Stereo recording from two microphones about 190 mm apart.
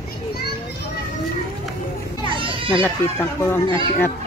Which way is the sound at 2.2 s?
25° right (ahead or behind).